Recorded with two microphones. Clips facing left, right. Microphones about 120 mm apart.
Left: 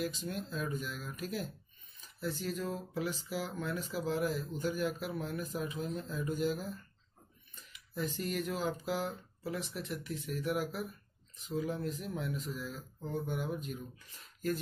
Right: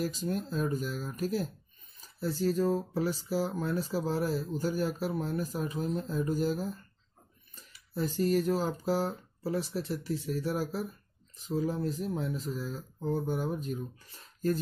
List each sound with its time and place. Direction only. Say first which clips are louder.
0.0 s speech: right 5 dB; 40° right (ahead or behind)